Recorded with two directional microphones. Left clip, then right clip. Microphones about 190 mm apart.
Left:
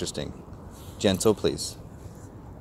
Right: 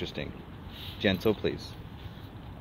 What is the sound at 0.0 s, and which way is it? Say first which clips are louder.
Speech: left 4 dB; 35° left (ahead or behind).